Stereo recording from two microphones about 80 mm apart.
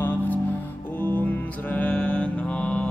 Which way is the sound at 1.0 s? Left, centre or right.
Centre.